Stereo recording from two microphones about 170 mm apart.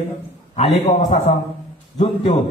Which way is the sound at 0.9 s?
45° left (ahead or behind).